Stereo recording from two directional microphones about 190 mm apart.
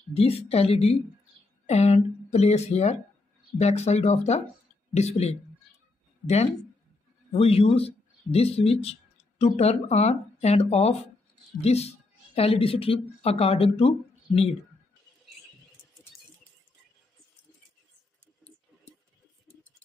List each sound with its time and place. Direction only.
0.1 s speech: 30° left (ahead or behind)